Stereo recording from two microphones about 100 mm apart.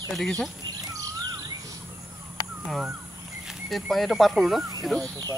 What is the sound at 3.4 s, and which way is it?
Speech, centre (ahead or behind).